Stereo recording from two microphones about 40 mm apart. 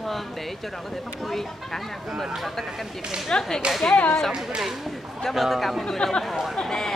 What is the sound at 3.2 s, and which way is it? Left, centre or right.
Speech, centre.